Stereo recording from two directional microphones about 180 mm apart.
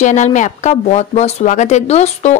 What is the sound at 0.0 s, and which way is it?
A woman's voice, 45° left (ahead or behind).